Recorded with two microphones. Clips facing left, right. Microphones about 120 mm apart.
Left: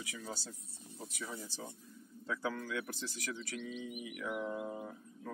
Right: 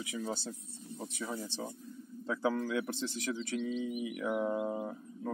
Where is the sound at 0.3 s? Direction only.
25° right (ahead or behind).